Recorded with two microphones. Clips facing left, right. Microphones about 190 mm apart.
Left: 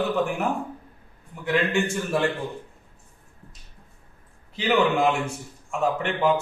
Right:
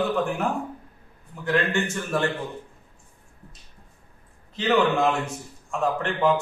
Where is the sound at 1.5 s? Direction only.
10° left (ahead or behind).